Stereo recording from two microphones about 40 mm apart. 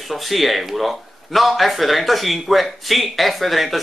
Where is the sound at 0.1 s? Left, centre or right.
Centre.